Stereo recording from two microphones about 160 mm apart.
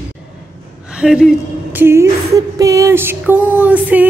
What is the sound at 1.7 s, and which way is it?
Music, 15° right (ahead or behind).